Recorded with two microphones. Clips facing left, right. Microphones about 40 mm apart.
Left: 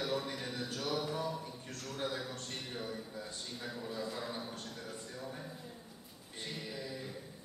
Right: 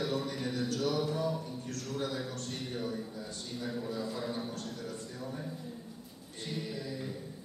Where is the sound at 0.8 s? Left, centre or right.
Centre.